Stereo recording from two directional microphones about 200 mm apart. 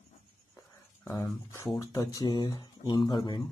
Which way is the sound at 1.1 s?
15° left (ahead or behind).